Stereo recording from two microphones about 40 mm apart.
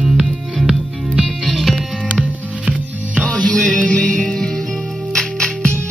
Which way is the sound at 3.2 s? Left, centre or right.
Left.